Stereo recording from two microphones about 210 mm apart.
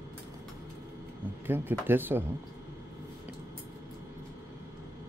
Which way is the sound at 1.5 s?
10° right (ahead or behind).